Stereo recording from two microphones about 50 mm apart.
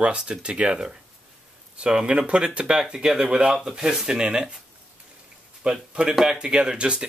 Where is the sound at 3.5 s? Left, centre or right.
Centre.